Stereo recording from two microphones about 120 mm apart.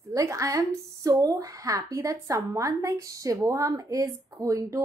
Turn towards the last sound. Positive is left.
turn(degrees=-25)  # may be behind; listen again after turning